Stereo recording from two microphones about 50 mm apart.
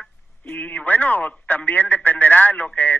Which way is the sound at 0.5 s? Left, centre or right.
Left.